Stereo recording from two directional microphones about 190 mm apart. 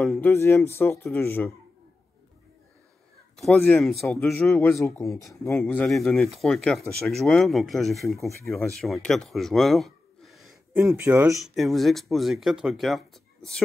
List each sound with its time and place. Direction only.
0.0 s speech: centre (ahead or behind)
0.3 s speech: 15° left (ahead or behind)
3.3 s speech: centre (ahead or behind)
5.6 s speech: 5° left (ahead or behind)
10.8 s speech: 10° right (ahead or behind)
11.3 s speech: centre (ahead or behind)